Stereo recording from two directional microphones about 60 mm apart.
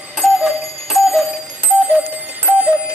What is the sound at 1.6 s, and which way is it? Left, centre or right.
Clock, centre.